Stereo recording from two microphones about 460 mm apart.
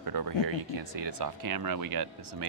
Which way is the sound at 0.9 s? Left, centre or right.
Right.